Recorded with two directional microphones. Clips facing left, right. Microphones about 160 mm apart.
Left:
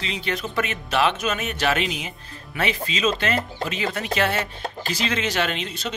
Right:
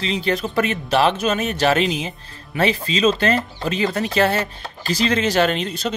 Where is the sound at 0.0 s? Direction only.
35° right (ahead or behind).